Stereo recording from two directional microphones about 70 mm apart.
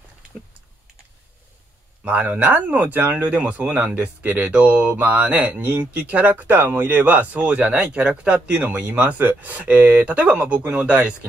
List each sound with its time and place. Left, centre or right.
2.0 s speech: right